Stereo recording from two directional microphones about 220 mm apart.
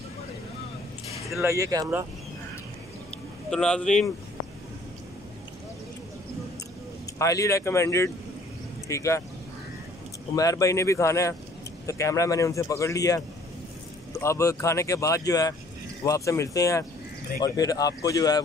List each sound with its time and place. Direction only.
1.4 s speech: 15° right (ahead or behind)
3.4 s speech: 5° left (ahead or behind)
7.2 s speech: 15° left (ahead or behind)
10.3 s speech: 15° left (ahead or behind)